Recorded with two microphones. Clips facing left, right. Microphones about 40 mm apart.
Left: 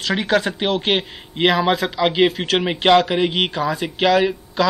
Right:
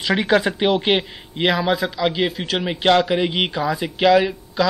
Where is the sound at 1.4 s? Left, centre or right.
Centre.